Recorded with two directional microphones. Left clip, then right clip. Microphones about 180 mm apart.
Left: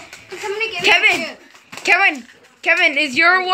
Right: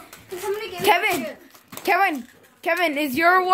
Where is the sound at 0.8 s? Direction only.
20° right (ahead or behind).